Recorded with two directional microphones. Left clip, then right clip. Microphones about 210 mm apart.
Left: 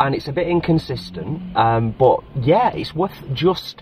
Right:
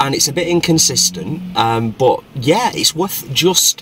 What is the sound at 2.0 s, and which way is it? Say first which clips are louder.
Speech: right 1 dB; 15° right (ahead or behind).